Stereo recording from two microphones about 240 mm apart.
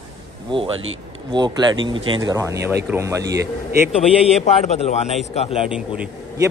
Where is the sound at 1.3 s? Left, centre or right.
Centre.